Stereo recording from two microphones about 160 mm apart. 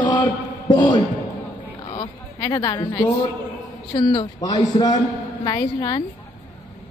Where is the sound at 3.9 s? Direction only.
30° left (ahead or behind).